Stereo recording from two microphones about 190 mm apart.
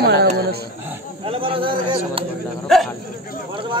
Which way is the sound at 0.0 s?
60° right (ahead or behind).